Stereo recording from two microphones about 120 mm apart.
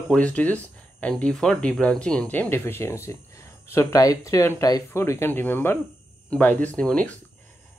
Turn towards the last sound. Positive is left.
turn(degrees=10)  # may be behind; listen again after turning